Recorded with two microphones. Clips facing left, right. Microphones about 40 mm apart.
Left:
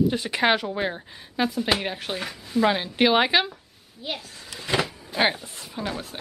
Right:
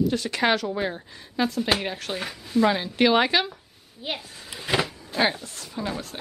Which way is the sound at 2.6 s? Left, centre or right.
Centre.